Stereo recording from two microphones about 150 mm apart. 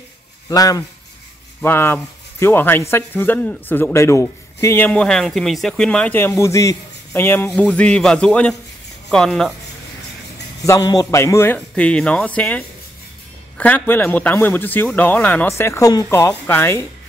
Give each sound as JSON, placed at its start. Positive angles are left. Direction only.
{"t": 0.5, "sound": "a man's voice", "side_deg": 25}
{"t": 10.6, "sound": "a man's voice", "side_deg": 25}